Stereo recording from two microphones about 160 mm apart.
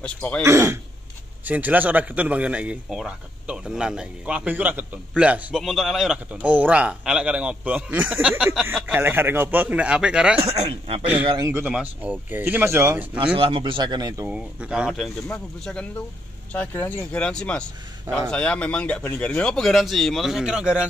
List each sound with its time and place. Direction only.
0.0 s speech: 10° left (ahead or behind)
0.4 s a man's voice: 20° right (ahead or behind)
11.2 s speech: 25° right (ahead or behind)
11.5 s a man's voice: 10° right (ahead or behind)
13.2 s speech: 35° right (ahead or behind)
14.3 s speech: 5° right (ahead or behind)